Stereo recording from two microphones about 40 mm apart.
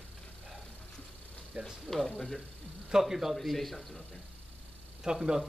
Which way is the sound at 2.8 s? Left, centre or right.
Centre.